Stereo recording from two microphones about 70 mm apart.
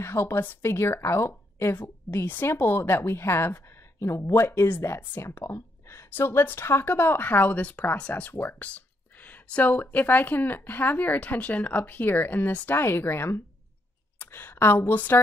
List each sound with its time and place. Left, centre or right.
0.0 s speech: left